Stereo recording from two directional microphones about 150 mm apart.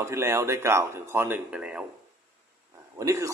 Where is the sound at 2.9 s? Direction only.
20° right (ahead or behind).